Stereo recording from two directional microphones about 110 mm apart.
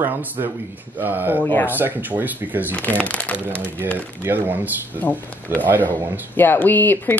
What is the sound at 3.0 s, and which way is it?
Speech, 15° left (ahead or behind).